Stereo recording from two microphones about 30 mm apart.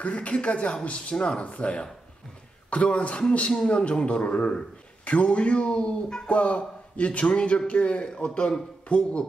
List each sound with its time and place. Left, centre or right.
0.0 s speech: left
1.4 s speech: left
3.2 s speech: left
6.2 s speech: left